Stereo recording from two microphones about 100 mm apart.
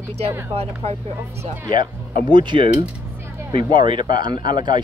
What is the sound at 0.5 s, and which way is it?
Speech, 90° right.